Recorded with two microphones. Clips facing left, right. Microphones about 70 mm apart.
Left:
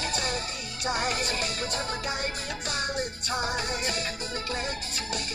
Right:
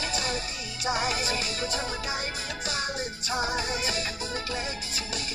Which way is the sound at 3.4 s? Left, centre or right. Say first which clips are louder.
Right 1 dB; left.